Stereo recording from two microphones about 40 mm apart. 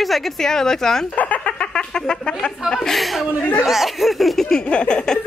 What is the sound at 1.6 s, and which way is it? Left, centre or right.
Speech, centre.